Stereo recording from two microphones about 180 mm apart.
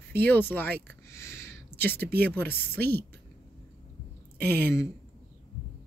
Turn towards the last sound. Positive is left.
turn(degrees=15)  # may be behind; listen again after turning